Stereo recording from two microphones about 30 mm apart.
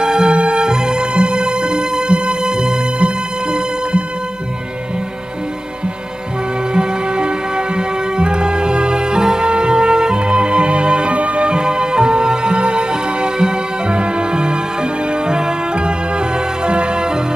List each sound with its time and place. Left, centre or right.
0.0 s music: right
0.3 s music: right
0.6 s music: right
2.5 s music: right
6.7 s music: right
11.4 s music: right